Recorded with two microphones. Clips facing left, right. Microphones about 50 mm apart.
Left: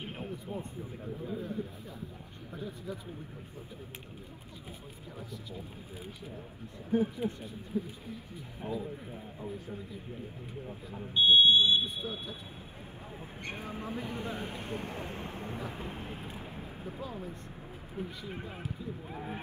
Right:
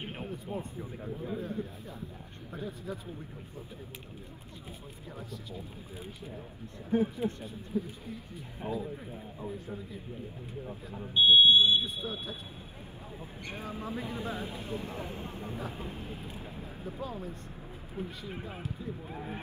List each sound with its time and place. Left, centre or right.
0.0 s a sound: right
1.2 s speech: right
2.5 s speech: right
6.9 s speech: right
7.7 s speech: left
8.6 s speech: right
11.1 s speech: right
11.8 s speech: right
13.4 s speech: left
15.7 s vehicle: left
19.0 s speech: centre